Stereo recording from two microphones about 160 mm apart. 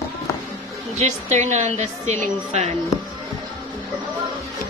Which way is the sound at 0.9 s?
45° right (ahead or behind).